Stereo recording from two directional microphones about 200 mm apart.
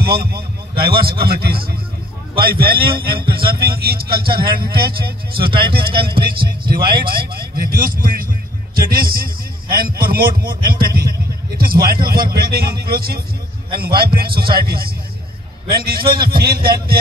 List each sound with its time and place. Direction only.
0.0 s a man's voice: 50° right (ahead or behind)